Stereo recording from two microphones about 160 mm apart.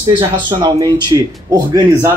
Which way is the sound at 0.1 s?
30° right (ahead or behind).